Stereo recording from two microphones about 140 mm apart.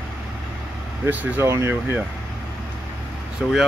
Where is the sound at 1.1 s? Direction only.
10° right (ahead or behind).